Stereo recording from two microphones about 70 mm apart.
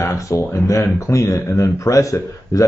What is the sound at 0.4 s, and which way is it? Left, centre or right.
Speech, left.